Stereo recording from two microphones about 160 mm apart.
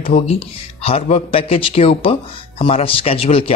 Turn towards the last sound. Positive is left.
turn(degrees=35)  # may be behind; listen again after turning